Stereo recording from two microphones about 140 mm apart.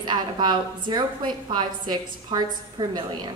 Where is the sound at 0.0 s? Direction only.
30° right (ahead or behind).